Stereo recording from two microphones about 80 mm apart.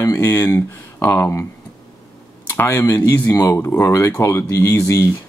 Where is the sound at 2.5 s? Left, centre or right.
Left.